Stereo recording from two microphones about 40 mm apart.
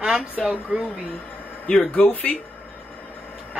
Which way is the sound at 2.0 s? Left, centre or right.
Left.